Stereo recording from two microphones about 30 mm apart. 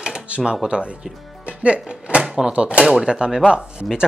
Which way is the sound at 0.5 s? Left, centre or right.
Right.